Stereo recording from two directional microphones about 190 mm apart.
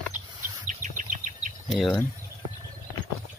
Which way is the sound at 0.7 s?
40° right (ahead or behind).